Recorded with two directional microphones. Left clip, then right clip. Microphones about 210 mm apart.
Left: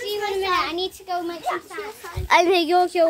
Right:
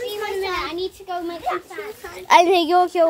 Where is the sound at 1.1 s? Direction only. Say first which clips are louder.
Left 2 dB; 25° left (ahead or behind).